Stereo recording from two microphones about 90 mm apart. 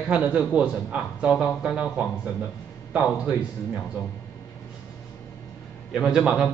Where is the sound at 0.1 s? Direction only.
15° right (ahead or behind).